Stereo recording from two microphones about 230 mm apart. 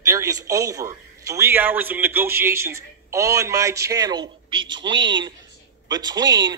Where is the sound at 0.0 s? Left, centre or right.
Centre.